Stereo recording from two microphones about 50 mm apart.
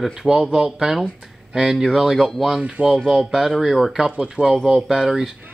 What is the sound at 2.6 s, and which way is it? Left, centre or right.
Speech, centre.